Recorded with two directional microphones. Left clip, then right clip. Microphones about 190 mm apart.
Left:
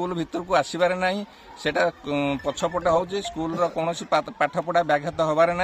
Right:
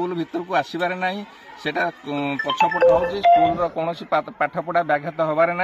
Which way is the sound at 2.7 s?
15° left (ahead or behind).